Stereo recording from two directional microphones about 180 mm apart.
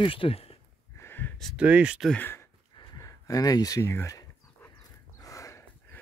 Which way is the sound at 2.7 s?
20° left (ahead or behind).